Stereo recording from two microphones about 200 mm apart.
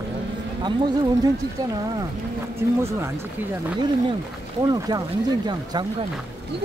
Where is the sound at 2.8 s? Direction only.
15° right (ahead or behind).